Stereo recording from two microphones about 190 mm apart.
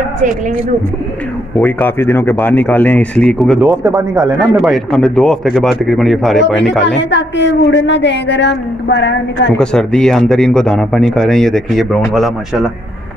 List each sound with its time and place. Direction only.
1.6 s speech: 10° left (ahead or behind)
3.6 s speech: 15° right (ahead or behind)
4.6 s speech: centre (ahead or behind)
7.0 s a woman's voice: 70° left (ahead or behind)
9.6 s speech: 5° left (ahead or behind)